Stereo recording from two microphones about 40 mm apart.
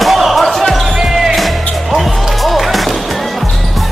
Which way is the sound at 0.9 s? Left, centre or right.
Centre.